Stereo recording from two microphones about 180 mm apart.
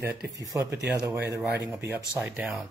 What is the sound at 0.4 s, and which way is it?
Speech, 20° right (ahead or behind).